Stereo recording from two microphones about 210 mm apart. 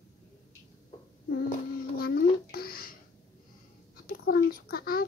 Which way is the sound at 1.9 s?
45° left (ahead or behind).